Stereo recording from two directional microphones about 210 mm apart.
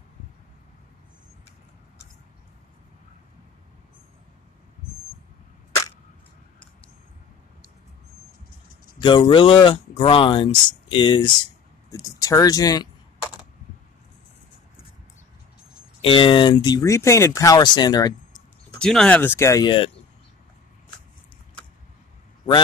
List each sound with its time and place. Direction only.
9.2 s speech: 25° left (ahead or behind)
16.0 s speech: 25° left (ahead or behind)
18.8 s speech: 5° left (ahead or behind); by 19.9 s 20° left (ahead or behind)